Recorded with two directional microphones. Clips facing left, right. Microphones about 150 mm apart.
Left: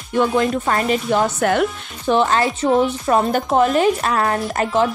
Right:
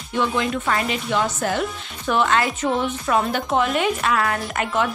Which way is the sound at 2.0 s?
30° left (ahead or behind).